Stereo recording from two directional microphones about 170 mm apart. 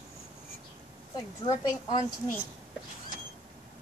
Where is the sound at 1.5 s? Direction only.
25° left (ahead or behind).